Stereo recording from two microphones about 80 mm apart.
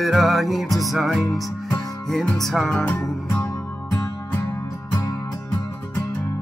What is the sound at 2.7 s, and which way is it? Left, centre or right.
Music, left.